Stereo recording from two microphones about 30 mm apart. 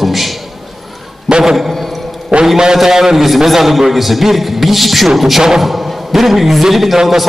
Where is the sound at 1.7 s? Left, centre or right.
Centre.